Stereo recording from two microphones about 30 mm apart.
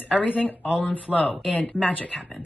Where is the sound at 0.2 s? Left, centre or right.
Left.